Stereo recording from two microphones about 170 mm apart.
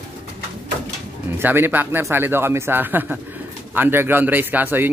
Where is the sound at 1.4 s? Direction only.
10° right (ahead or behind).